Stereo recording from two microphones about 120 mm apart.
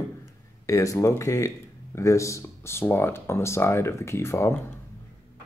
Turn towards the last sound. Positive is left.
turn(degrees=20)  # may be behind; listen again after turning